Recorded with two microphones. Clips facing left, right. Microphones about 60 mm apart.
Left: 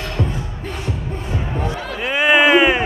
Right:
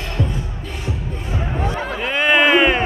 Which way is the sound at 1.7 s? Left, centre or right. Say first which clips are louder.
Right 2 dB; right.